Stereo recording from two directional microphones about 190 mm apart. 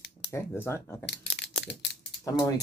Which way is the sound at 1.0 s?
65° left (ahead or behind).